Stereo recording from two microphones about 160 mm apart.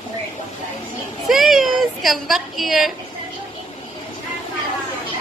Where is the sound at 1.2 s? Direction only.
Centre (ahead or behind).